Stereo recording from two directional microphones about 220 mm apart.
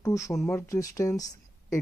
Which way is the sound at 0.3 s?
Centre (ahead or behind).